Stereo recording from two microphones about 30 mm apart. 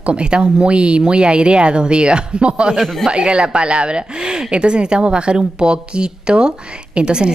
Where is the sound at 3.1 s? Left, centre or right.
Right.